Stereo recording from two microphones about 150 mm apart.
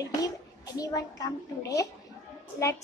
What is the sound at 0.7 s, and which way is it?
A woman's voice, 25° left (ahead or behind).